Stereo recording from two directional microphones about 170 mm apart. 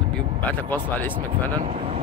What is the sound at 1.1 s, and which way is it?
Speech, 25° right (ahead or behind).